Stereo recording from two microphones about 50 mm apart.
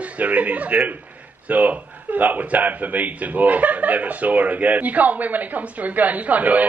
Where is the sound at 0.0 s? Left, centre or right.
Right.